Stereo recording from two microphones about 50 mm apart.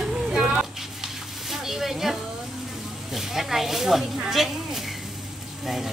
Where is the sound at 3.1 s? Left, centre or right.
Centre.